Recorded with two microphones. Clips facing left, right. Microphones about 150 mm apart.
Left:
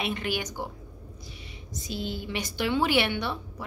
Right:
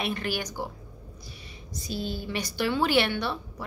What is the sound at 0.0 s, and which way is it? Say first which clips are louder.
Speech: even; 15° left (ahead or behind).